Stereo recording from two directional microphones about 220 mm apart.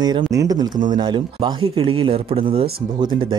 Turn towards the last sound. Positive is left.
turn(degrees=-25)  # may be behind; listen again after turning